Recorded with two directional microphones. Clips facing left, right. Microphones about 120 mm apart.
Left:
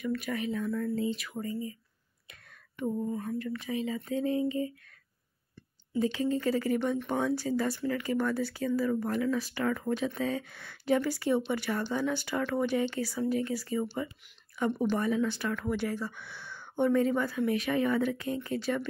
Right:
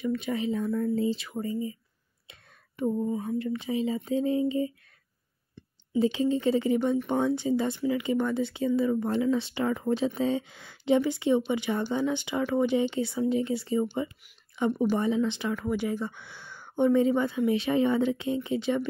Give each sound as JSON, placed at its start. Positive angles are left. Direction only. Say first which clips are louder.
{"t": 0.1, "sound": "speech", "louder": "right 2 dB", "side_deg": -25}
{"t": 2.8, "sound": "speech", "louder": "right 4 dB", "side_deg": -30}
{"t": 6.1, "sound": "speech", "louder": "right 4 dB", "side_deg": -25}
{"t": 6.8, "sound": "speech", "louder": "right 4 dB", "side_deg": -10}
{"t": 7.1, "sound": "speech", "louder": "right 4 dB", "side_deg": -20}